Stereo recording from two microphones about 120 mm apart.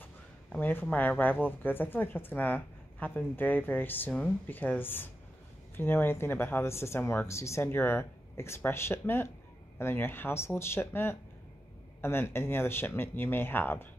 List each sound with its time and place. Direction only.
0.0 s speech: 15° left (ahead or behind)